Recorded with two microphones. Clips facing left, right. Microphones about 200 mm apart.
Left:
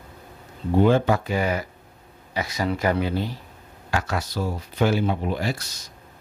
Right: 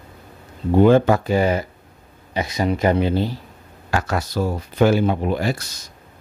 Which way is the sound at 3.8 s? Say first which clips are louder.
Right 4 dB; 45° right (ahead or behind).